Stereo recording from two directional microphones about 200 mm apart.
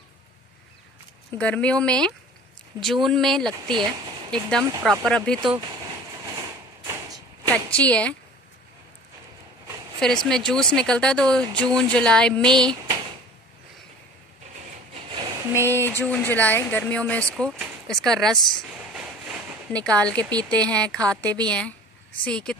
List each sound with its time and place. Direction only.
1.4 s speech: 5° left (ahead or behind)
3.7 s speech: 20° right (ahead or behind)
4.3 s speech: 5° left (ahead or behind)
5.4 s a sound: 20° right (ahead or behind)
7.5 s speech: 5° left (ahead or behind)
9.9 s speech: 5° left (ahead or behind)
15.0 s a sound: 25° right (ahead or behind)
15.5 s speech: 10° left (ahead or behind)
17.3 s a sound: 5° left (ahead or behind)
20.2 s speech: 20° right (ahead or behind)
20.4 s speech: 5° left (ahead or behind)